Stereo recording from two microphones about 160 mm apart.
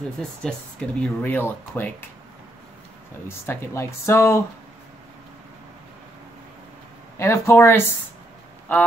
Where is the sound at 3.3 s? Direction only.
15° left (ahead or behind).